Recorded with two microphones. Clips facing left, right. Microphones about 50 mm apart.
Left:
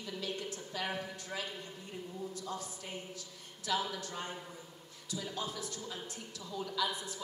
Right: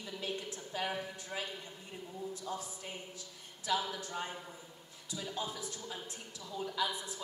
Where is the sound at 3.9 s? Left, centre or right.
Centre.